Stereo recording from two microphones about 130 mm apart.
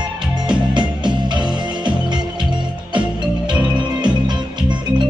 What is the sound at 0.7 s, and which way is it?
Music, 35° right (ahead or behind).